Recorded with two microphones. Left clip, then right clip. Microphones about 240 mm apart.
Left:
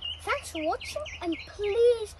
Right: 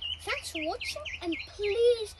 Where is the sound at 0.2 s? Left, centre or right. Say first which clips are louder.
Left 3 dB; centre.